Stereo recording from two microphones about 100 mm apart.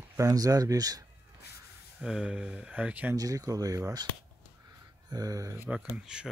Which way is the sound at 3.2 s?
35° right (ahead or behind).